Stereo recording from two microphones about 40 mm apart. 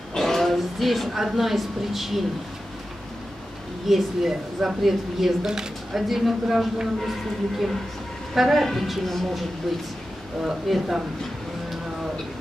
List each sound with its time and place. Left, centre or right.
0.1 s speech: centre
3.8 s speech: centre
10.4 s speech: centre